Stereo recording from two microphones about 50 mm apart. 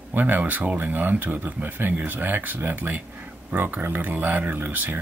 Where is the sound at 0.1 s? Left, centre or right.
Right.